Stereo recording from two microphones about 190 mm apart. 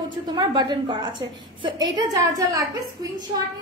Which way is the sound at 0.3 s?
25° right (ahead or behind).